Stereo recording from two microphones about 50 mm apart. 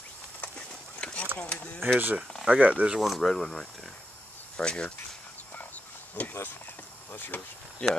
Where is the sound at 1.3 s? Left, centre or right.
Left.